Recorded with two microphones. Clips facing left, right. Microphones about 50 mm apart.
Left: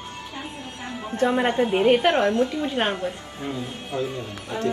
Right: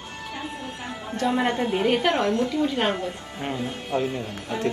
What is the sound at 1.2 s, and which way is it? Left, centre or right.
A woman's voice, left.